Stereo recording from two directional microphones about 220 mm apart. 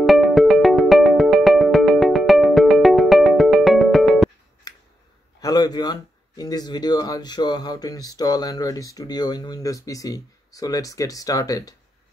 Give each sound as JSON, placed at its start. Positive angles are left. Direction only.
{"t": 0.0, "sound": "music", "side_deg": 0}
{"t": 4.7, "sound": "scissors", "side_deg": 15}
{"t": 5.4, "sound": "speech", "side_deg": 15}